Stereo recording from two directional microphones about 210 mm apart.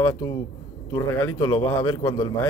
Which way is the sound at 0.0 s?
20° left (ahead or behind).